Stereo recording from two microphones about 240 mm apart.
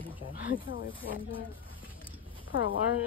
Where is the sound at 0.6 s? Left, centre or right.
Left.